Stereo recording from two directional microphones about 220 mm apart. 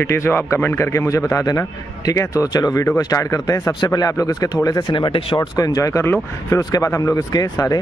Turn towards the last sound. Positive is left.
turn(degrees=15)  # may be behind; listen again after turning